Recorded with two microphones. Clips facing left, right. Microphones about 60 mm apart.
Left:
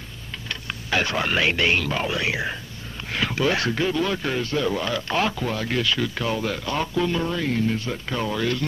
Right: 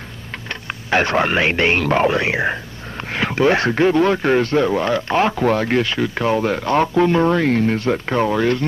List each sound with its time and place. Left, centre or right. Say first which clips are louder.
0.8 s speech: right 7 dB; right
4.6 s speech: right 6 dB; right
5.4 s speech: right 8 dB; right